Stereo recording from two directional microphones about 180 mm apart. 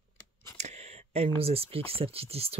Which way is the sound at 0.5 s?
40° right (ahead or behind).